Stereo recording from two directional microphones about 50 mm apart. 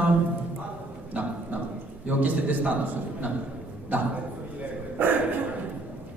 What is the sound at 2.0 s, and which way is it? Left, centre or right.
A man's voice, right.